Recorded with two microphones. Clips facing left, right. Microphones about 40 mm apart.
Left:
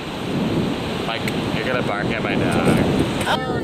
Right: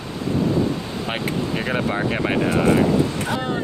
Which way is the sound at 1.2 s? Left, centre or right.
Left.